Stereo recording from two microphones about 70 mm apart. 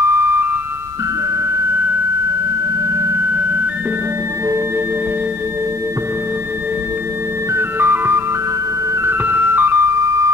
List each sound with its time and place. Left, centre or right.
0.1 s music: right
3.0 s a sound: right
7.5 s music: right